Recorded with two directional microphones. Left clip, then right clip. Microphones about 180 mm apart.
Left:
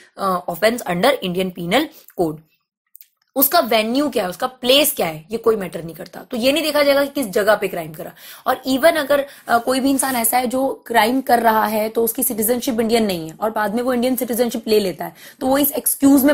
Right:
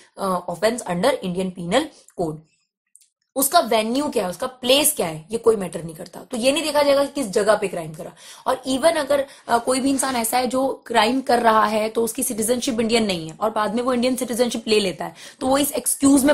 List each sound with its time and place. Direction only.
0.2 s a woman's voice: 15° left (ahead or behind)
3.3 s a woman's voice: 20° left (ahead or behind); by 16.3 s centre (ahead or behind)